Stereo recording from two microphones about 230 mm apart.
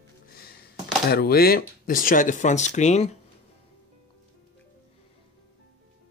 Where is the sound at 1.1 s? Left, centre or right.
Left.